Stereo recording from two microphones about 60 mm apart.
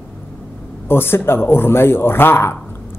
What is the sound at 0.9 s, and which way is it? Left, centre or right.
Speech, left.